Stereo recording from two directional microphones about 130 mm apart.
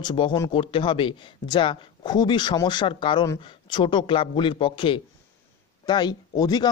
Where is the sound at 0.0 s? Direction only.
40° left (ahead or behind).